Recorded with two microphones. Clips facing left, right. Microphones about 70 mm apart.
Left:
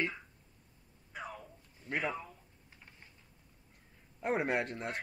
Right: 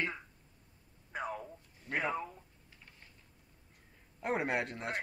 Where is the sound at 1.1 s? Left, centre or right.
Right.